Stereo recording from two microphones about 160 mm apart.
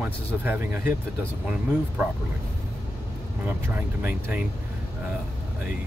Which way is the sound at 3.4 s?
10° right (ahead or behind).